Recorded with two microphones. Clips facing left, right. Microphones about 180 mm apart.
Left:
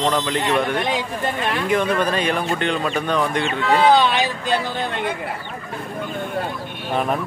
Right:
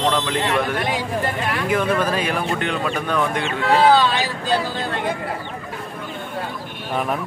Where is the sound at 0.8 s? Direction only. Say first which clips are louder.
Even; 20° left (ahead or behind).